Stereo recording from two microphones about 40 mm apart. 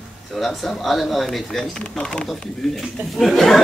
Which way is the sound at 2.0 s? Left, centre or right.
Centre.